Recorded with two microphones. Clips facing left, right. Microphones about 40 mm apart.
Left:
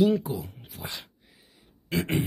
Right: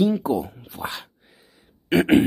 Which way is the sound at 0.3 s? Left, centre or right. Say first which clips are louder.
Right 10 dB; right.